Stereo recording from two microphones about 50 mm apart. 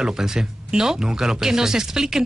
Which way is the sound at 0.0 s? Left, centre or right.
Centre.